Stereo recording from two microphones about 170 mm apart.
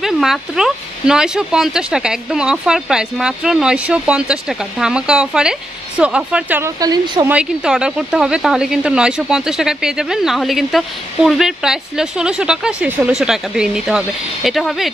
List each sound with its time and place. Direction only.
0.0 s speech: centre (ahead or behind)
6.8 s speech: 25° right (ahead or behind)
7.2 s speech: 5° right (ahead or behind)